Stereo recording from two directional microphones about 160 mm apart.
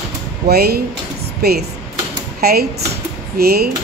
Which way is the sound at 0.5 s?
75° right (ahead or behind).